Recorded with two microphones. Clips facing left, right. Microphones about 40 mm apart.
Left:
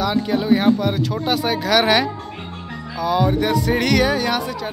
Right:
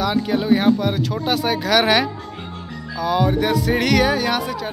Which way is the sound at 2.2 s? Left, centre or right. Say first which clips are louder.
Even; centre.